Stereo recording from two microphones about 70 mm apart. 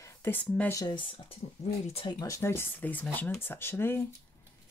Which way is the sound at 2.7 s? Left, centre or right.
Left.